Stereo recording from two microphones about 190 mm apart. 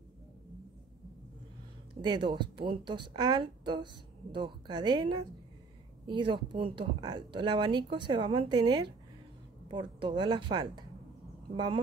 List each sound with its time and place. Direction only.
2.0 s a woman's voice: 25° right (ahead or behind)